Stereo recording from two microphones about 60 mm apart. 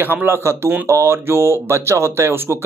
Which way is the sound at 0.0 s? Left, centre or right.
Right.